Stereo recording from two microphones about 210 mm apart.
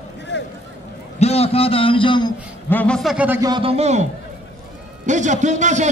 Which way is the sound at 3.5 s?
25° right (ahead or behind).